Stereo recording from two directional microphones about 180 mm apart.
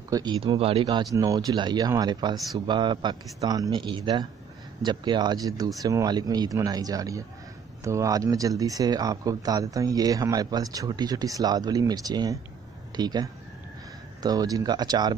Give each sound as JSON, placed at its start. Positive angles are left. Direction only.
{"t": 0.1, "sound": "speech", "side_deg": -25}